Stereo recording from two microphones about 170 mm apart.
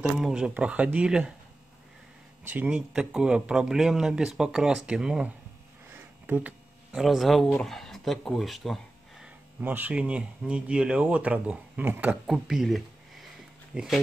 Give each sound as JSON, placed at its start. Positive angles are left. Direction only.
{"t": 0.0, "sound": "speech", "side_deg": -5}
{"t": 2.4, "sound": "speech", "side_deg": -10}
{"t": 12.3, "sound": "speech", "side_deg": 0}